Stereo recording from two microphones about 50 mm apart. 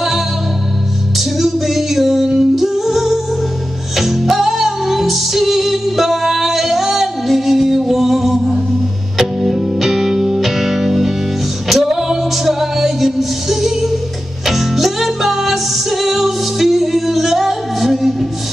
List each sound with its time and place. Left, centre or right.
1.4 s music: centre